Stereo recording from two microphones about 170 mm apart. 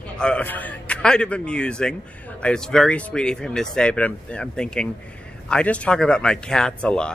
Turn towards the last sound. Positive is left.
turn(degrees=5)  # may be behind; listen again after turning